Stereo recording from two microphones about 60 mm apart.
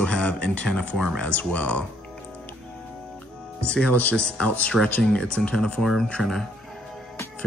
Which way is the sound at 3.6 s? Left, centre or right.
Left.